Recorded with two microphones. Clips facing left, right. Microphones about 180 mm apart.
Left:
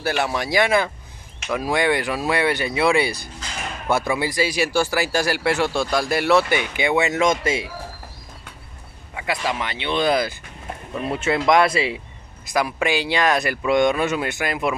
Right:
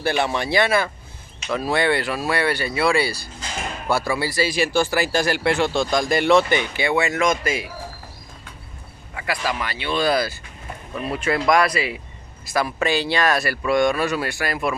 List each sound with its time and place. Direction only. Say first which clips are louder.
0.0 s speech: right 1 dB; 5° left (ahead or behind); by 7.6 s 25° left (ahead or behind)
9.1 s a sound: left 1 dB; 20° left (ahead or behind)
9.5 s speech: left 1 dB; 20° left (ahead or behind)
12.4 s speech: even; 15° left (ahead or behind)